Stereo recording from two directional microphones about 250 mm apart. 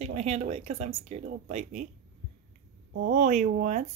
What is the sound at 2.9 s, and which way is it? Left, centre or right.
Speech, right.